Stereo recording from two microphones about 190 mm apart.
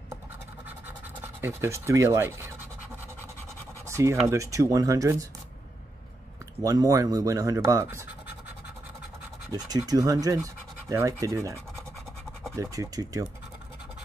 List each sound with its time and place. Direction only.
1.4 s speech: 15° right (ahead or behind)
3.8 s scratch: 15° right (ahead or behind)
4.3 s speech: 15° right (ahead or behind)
6.6 s speech: 20° right (ahead or behind)
9.5 s speech: 20° right (ahead or behind)